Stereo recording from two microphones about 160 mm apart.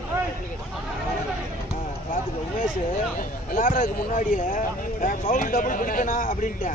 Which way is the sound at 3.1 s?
60° left (ahead or behind).